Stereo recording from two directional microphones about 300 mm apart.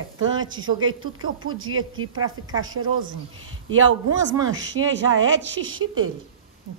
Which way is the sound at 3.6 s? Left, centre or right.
Right.